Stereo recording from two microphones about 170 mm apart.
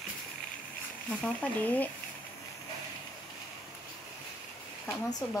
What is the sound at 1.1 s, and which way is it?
Speech, 10° left (ahead or behind).